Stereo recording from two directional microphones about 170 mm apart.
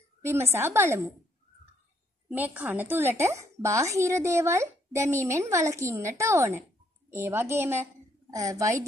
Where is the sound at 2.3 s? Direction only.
10° right (ahead or behind).